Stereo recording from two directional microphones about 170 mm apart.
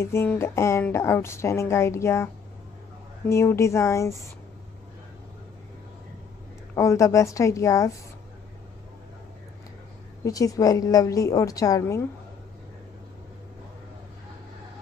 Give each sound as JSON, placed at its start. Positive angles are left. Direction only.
{"t": 0.0, "sound": "a woman's voice", "side_deg": 15}
{"t": 3.3, "sound": "a woman's voice", "side_deg": 15}
{"t": 6.7, "sound": "a woman's voice", "side_deg": 20}
{"t": 10.2, "sound": "a woman's voice", "side_deg": 20}